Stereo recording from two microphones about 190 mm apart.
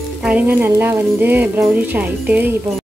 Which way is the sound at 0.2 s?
5° right (ahead or behind).